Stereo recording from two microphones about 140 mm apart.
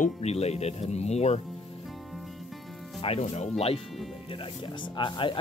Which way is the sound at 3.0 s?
50° left (ahead or behind).